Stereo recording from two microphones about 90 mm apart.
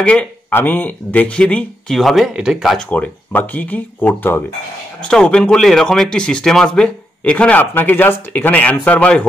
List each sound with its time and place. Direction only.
0.0 s speech: 10° left (ahead or behind)
0.5 s speech: 20° left (ahead or behind)
2.0 s speech: centre (ahead or behind)
2.8 s speech: 15° left (ahead or behind)
5.0 s speech: 10° left (ahead or behind)